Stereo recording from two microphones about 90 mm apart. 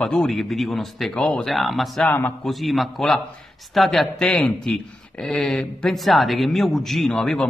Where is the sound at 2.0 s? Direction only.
20° left (ahead or behind).